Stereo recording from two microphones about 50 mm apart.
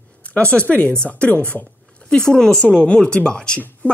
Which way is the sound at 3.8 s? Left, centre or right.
Left.